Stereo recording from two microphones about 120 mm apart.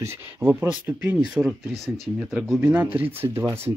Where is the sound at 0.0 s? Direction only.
15° right (ahead or behind).